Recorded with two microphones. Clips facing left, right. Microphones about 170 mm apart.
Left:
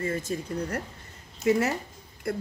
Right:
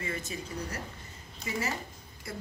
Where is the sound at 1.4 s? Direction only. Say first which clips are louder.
Left 11 dB; 60° left (ahead or behind).